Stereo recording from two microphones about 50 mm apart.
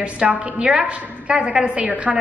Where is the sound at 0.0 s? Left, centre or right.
Right.